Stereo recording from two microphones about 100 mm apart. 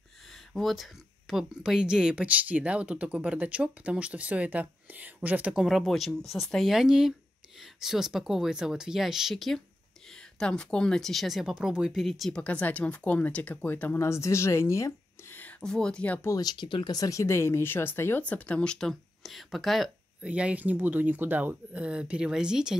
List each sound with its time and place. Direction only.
0.3 s speech: centre (ahead or behind)
12.4 s speech: 15° left (ahead or behind)
14.0 s speech: 30° left (ahead or behind)
15.3 s speech: 10° left (ahead or behind)
16.3 s speech: 40° left (ahead or behind)
16.9 s speech: 35° left (ahead or behind); by 19.9 s centre (ahead or behind)
20.2 s speech: 15° right (ahead or behind)